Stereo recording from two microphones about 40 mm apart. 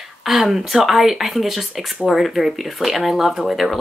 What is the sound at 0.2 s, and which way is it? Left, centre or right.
Speech, centre.